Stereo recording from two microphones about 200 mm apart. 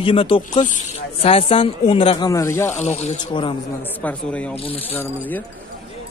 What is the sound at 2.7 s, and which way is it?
Speech, 35° left (ahead or behind).